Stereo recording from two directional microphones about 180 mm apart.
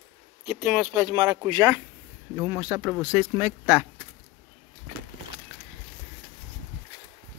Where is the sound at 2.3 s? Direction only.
10° right (ahead or behind).